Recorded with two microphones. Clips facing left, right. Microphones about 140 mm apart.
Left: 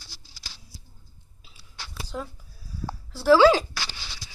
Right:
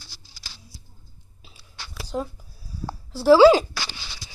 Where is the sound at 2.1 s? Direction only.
30° right (ahead or behind).